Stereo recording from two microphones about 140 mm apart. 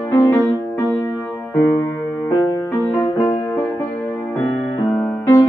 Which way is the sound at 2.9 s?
15° left (ahead or behind).